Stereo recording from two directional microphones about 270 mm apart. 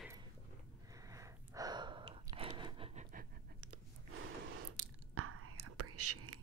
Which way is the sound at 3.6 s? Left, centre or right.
Right.